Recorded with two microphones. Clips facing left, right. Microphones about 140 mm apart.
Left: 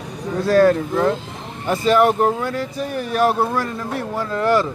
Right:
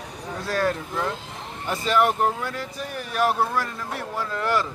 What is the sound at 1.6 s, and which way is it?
Speech, 45° left (ahead or behind).